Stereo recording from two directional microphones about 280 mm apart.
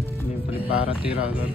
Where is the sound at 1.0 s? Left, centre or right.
Centre.